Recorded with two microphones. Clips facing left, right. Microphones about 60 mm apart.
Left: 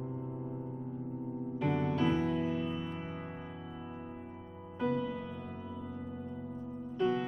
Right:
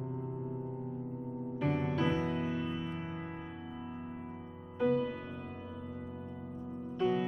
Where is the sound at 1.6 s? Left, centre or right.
Centre.